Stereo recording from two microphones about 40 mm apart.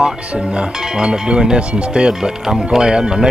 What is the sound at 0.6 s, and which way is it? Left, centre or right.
Speech, right.